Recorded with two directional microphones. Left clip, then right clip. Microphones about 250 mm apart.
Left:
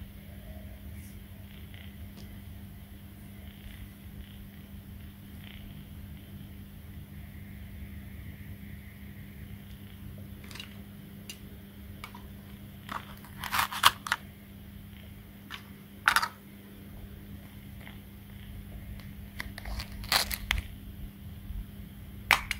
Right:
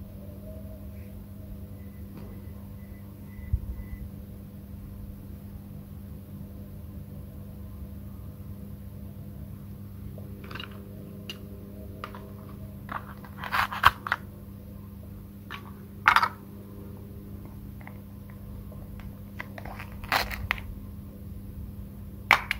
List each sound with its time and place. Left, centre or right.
12.9 s crunch: centre
15.5 s a sound: centre
19.3 s crunch: centre
22.3 s clapping: centre